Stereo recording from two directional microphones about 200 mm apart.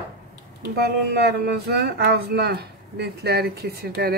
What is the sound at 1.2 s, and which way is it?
Speech, 55° right (ahead or behind).